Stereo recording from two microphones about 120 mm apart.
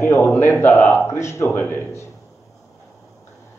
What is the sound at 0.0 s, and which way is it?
A man's voice, 20° left (ahead or behind).